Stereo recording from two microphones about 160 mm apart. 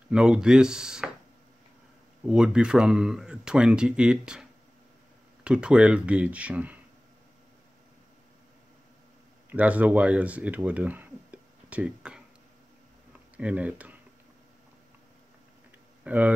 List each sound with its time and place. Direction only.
0.1 s speech: 5° right (ahead or behind)
2.2 s speech: 5° right (ahead or behind)
9.5 s speech: 10° right (ahead or behind)
13.1 s a sound: 10° right (ahead or behind)
16.0 s speech: 10° right (ahead or behind)